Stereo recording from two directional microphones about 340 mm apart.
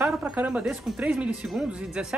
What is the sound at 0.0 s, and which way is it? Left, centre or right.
Speech, centre.